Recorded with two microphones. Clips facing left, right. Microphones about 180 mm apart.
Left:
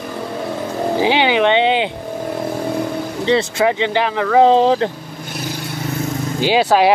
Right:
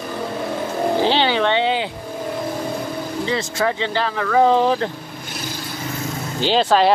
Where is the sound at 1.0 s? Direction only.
15° left (ahead or behind).